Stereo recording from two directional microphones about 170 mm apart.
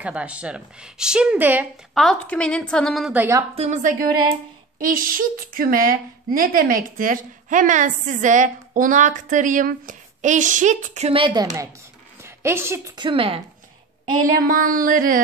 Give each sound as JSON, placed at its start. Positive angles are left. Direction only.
{"t": 0.0, "sound": "a woman's voice", "side_deg": -5}
{"t": 2.0, "sound": "a woman's voice", "side_deg": 5}
{"t": 3.5, "sound": "a woman's voice", "side_deg": -40}
{"t": 12.9, "sound": "speech", "side_deg": -30}
{"t": 14.4, "sound": "a sound", "side_deg": -55}